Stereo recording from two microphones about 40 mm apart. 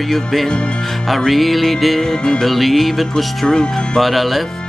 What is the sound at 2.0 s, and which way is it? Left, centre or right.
Speech, centre.